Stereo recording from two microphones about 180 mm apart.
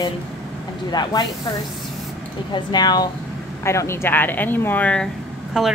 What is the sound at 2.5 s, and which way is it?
A woman's voice, 25° left (ahead or behind).